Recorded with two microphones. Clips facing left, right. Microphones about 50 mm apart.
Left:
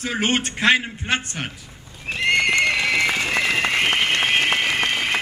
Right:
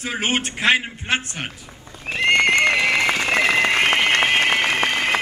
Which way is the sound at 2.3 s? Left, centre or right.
Right.